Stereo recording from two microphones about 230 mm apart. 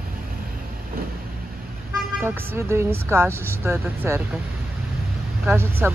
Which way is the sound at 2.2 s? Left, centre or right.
Centre.